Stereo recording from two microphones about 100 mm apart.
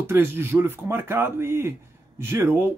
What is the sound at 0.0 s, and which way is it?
Speech, 25° right (ahead or behind).